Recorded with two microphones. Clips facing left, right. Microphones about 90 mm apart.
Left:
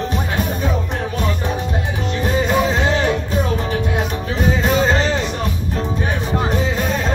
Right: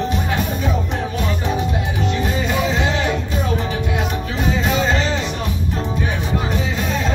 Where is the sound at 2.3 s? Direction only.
40° left (ahead or behind).